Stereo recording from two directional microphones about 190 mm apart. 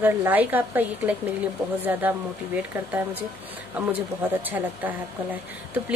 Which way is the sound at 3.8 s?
5° right (ahead or behind).